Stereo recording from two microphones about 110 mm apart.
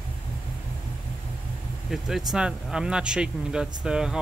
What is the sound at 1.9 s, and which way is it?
Speech, 5° right (ahead or behind).